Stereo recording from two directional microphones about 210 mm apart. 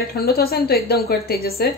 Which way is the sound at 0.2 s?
45° left (ahead or behind).